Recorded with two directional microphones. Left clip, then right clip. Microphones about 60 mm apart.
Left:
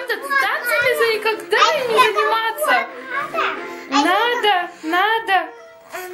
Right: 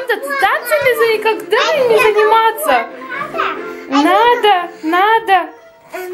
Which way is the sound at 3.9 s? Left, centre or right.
Centre.